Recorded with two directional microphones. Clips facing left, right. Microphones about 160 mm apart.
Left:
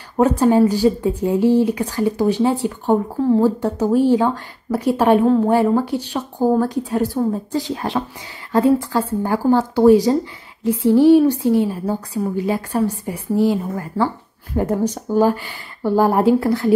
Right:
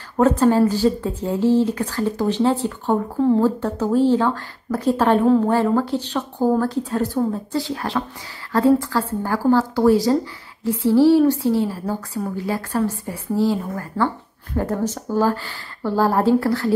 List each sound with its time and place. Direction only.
0.2 s a woman's voice: 15° left (ahead or behind)
3.2 s speech: centre (ahead or behind)
3.4 s a woman's voice: 15° left (ahead or behind)